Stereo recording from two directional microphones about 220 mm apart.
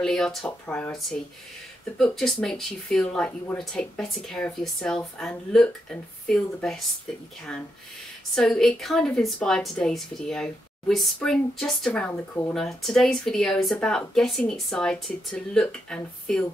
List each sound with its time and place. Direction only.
0.0 s a woman's voice: centre (ahead or behind)
8.4 s a woman's voice: centre (ahead or behind)